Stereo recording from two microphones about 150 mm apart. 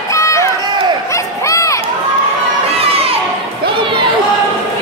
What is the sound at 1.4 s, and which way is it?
Crowd, 20° left (ahead or behind).